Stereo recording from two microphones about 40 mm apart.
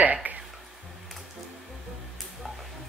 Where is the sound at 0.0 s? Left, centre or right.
Right.